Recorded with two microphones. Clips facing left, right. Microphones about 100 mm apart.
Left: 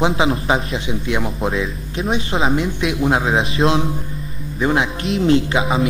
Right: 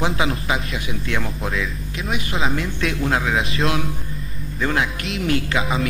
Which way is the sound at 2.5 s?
20° left (ahead or behind).